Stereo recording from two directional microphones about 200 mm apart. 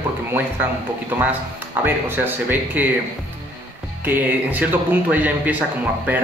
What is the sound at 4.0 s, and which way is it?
Speech, 10° right (ahead or behind).